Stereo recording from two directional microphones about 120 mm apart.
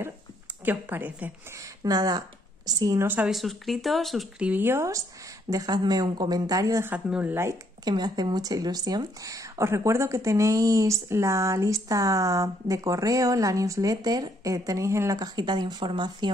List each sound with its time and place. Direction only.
0.7 s a woman's voice: 15° right (ahead or behind)
1.6 s a woman's voice: 30° right (ahead or behind)
3.3 s speech: centre (ahead or behind)
4.5 s a woman's voice: 15° right (ahead or behind)
7.1 s a woman's voice: 10° right (ahead or behind)
7.8 s speech: 35° right (ahead or behind)